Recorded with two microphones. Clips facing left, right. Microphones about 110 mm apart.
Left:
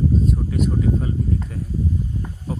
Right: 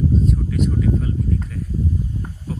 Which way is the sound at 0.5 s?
25° left (ahead or behind).